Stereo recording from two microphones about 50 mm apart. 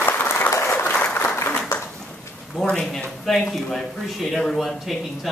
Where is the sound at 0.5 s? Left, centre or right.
Left.